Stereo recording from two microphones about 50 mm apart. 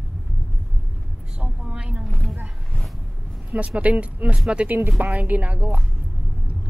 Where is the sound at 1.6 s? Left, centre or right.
Centre.